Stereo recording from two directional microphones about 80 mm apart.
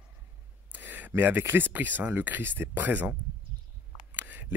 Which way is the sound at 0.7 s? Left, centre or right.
Right.